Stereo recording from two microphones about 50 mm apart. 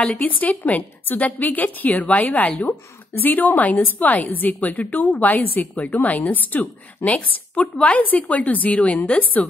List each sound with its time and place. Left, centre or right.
0.2 s a woman's voice: left
7.1 s a woman's voice: left